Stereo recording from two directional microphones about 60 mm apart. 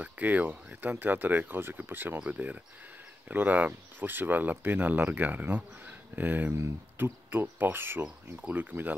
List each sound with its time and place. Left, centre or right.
0.0 s speech: right